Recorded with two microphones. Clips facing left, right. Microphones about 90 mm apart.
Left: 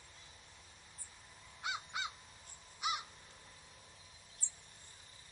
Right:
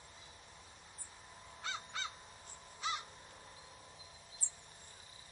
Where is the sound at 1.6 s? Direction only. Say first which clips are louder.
Left 2 dB; 15° left (ahead or behind).